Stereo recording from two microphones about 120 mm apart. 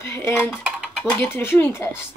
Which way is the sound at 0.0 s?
20° left (ahead or behind).